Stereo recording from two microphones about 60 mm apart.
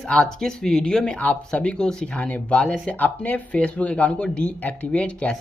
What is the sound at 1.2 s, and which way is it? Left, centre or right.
Speech, left.